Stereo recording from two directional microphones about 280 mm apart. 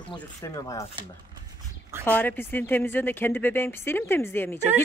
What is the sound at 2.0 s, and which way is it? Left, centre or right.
A woman's voice, centre.